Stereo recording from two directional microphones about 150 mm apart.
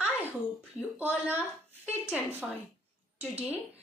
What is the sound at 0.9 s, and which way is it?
A woman's voice, 10° right (ahead or behind).